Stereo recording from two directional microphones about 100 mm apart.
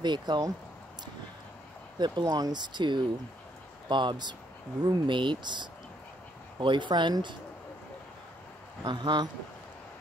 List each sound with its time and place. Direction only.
0.0 s speech: 45° right (ahead or behind)
2.0 s speech: 45° right (ahead or behind)
8.8 s speech: 45° right (ahead or behind)